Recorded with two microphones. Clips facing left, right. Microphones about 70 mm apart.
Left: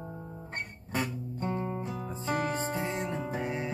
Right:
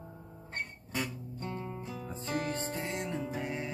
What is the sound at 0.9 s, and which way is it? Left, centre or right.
Guitar, left.